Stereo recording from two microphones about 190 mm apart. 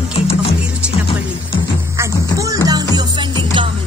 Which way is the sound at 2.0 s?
15° right (ahead or behind).